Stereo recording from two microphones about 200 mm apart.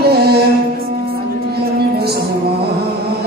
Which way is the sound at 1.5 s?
50° right (ahead or behind).